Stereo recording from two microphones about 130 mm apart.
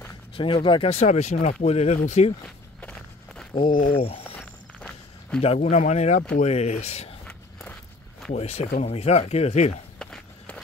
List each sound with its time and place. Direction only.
0.4 s speech: 40° left (ahead or behind); by 2.3 s 55° left (ahead or behind)
2.4 s walk: 10° left (ahead or behind)
3.5 s speech: 40° left (ahead or behind)
4.4 s walk: 10° left (ahead or behind)
5.4 s speech: 55° left (ahead or behind)
8.4 s speech: 55° left (ahead or behind)
9.9 s walk: 10° left (ahead or behind)